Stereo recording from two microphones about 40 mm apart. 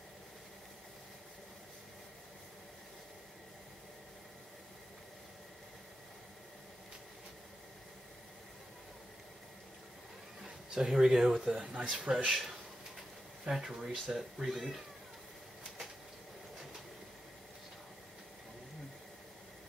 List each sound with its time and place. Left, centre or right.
10.7 s speech: centre
11.7 s speech: right
12.3 s speech: centre